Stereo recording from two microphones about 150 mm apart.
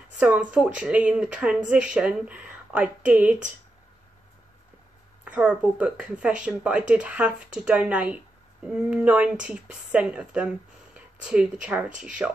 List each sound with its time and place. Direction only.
0.2 s speech: 10° right (ahead or behind)
5.2 s speech: 10° right (ahead or behind)